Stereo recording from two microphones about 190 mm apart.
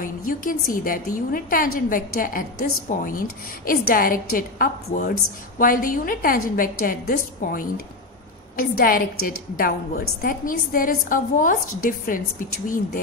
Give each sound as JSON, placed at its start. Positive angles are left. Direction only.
{"t": 0.0, "sound": "a woman's voice", "side_deg": 45}
{"t": 12.6, "sound": "a woman's voice", "side_deg": 45}